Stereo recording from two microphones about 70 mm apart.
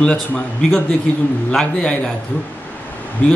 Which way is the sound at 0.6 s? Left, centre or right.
Centre.